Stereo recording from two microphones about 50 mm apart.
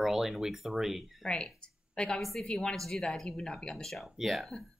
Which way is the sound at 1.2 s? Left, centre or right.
Centre.